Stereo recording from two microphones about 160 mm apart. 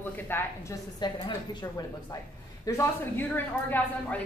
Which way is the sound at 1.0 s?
30° left (ahead or behind).